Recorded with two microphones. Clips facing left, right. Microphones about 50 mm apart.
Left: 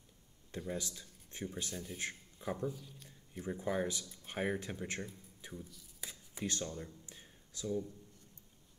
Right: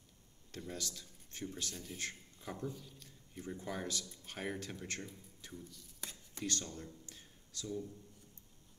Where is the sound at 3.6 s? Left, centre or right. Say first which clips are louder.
Left 6 dB; centre.